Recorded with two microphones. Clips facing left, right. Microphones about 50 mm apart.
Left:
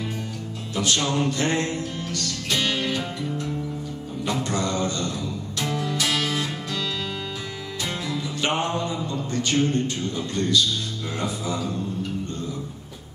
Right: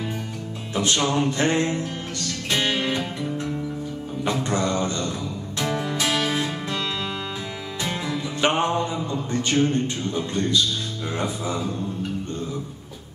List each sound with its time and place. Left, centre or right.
0.7 s music: right
4.2 s a man's voice: right
5.6 s music: right
8.1 s music: right
9.1 s a man's voice: right